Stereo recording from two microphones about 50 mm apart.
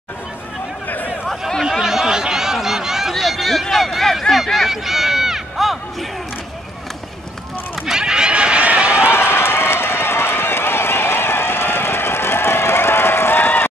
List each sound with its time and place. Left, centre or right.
0.8 s a sound: left
1.2 s a sound: centre
3.6 s run: centre
7.8 s run: centre
9.0 s run: left
13.4 s run: left